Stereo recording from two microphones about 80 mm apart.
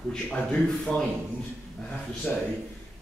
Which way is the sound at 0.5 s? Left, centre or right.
Centre.